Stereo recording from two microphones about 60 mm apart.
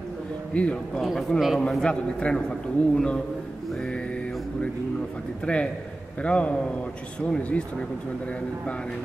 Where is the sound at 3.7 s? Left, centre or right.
Centre.